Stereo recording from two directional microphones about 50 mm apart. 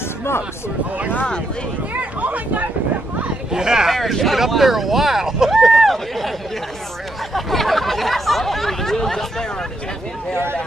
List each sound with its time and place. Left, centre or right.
2.0 s speech: right
3.5 s speech: centre
5.7 s run: centre
7.3 s a sound: centre